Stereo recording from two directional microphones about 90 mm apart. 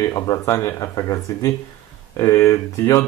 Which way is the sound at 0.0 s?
40° left (ahead or behind).